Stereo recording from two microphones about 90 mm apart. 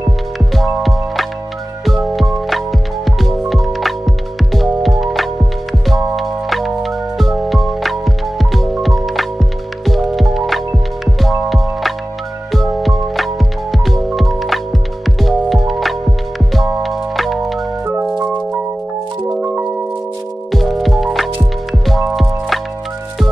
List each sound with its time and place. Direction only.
0.6 s music: centre (ahead or behind)
19.2 s music: 20° right (ahead or behind)
20.5 s music: centre (ahead or behind)